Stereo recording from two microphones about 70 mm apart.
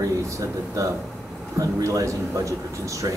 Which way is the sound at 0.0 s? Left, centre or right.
Right.